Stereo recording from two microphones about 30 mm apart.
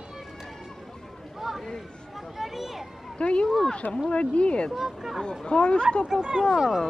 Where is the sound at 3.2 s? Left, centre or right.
Left.